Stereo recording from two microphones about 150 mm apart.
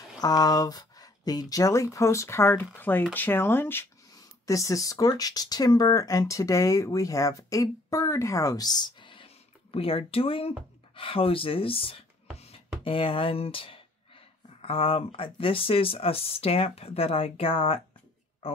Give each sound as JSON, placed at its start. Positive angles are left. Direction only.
{"t": 0.2, "sound": "speech", "side_deg": 25}